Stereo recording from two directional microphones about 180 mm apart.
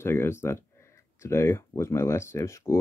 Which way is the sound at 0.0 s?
15° left (ahead or behind).